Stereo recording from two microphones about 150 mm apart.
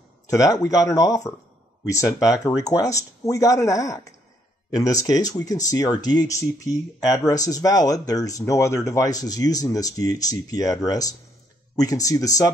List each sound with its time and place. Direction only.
0.3 s speech: 20° left (ahead or behind)